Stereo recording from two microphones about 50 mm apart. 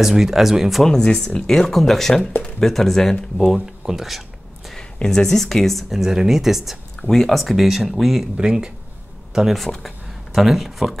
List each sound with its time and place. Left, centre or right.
0.0 s speech: centre
1.0 s speech: centre
3.3 s speech: centre
5.0 s speech: centre
7.0 s speech: centre